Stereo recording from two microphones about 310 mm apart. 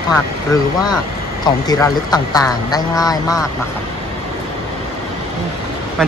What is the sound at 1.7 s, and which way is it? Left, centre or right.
Speech, centre.